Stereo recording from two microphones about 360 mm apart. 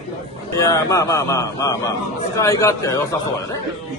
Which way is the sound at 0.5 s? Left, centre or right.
Centre.